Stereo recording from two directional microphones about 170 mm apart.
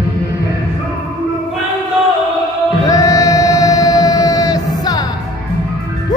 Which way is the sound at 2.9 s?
20° left (ahead or behind).